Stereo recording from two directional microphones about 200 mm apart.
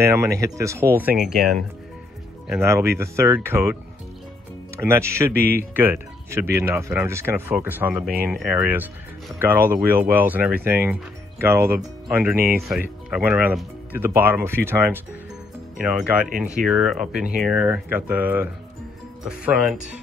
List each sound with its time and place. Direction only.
0.0 s speech: 15° right (ahead or behind)
2.5 s speech: 15° right (ahead or behind)
4.7 s speech: 10° right (ahead or behind)
5.3 s speech: 50° right (ahead or behind)
5.6 s speech: 10° right (ahead or behind)